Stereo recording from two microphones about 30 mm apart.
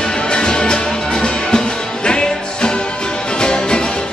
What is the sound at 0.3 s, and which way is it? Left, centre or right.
Music, left.